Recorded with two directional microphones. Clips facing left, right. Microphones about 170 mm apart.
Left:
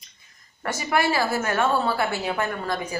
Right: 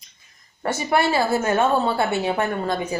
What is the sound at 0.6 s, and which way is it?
A woman's voice, 30° right (ahead or behind).